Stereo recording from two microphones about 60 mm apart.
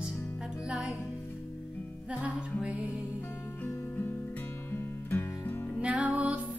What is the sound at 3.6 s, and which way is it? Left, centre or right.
Music, left.